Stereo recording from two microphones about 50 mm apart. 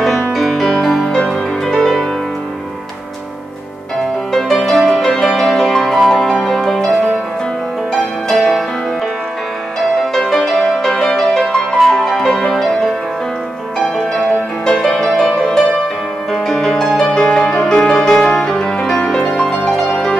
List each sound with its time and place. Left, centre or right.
0.0 s music: centre
4.3 s music: centre
10.8 s music: centre